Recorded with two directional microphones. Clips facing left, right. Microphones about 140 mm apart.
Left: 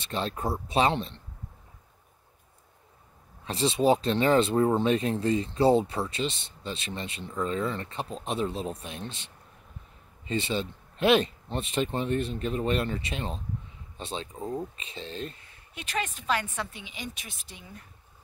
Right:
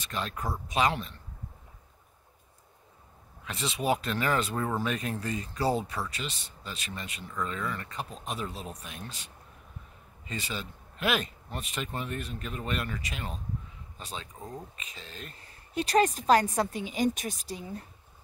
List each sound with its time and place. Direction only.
0.0 s speech: 30° left (ahead or behind)
3.4 s speech: 30° left (ahead or behind)
15.3 s a woman's voice: 40° right (ahead or behind)